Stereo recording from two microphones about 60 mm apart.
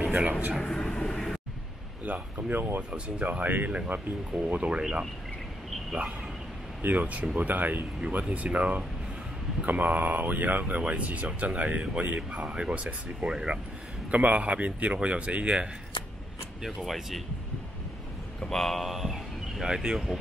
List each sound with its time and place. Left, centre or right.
0.1 s speech: right
0.7 s vehicle: centre
2.0 s speech: right
6.8 s speech: right
16.6 s a man's voice: centre
18.4 s a man's voice: centre